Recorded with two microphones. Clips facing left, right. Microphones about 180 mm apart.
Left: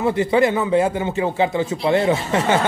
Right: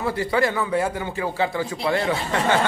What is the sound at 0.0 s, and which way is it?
Speech, 20° left (ahead or behind).